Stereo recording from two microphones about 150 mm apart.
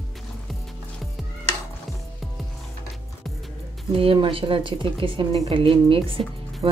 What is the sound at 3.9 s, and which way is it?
Speech, 35° right (ahead or behind).